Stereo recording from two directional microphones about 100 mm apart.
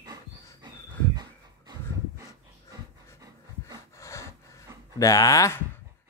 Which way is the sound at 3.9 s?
30° left (ahead or behind).